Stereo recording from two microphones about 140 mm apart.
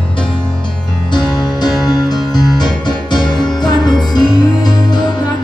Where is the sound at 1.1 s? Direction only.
30° left (ahead or behind).